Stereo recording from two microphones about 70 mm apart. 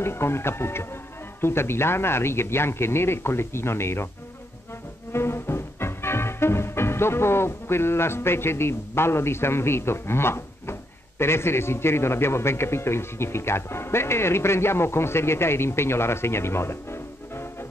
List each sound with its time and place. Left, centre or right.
0.0 s speech: left
5.1 s music: left